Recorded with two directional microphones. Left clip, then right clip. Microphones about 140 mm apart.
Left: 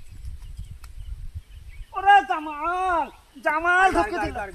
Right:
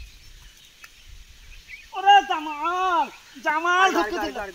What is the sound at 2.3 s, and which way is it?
Speech, 15° left (ahead or behind).